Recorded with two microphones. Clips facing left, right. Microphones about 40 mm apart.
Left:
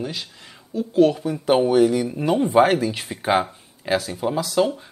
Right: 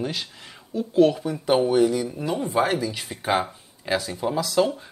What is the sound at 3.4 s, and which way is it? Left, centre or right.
Speech, centre.